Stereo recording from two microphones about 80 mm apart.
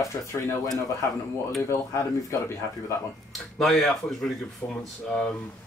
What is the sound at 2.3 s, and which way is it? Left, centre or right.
Speech, left.